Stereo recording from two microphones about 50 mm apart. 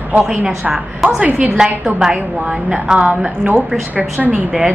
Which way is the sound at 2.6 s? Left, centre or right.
Centre.